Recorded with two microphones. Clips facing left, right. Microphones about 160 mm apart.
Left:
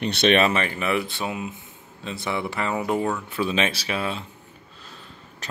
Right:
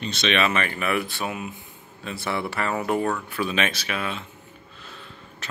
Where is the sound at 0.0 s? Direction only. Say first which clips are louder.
Left 6 dB; 65° left (ahead or behind).